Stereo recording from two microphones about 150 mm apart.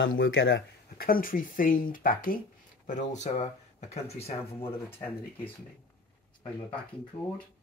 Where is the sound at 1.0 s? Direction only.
75° left (ahead or behind).